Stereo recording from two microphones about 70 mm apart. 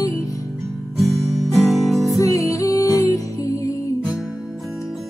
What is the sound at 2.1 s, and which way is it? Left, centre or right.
Music, left.